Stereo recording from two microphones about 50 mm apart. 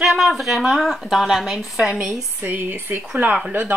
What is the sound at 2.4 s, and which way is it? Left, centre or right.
Speech, right.